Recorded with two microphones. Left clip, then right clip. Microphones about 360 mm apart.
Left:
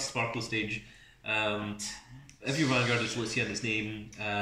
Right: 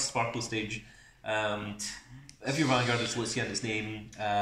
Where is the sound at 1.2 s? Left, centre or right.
Centre.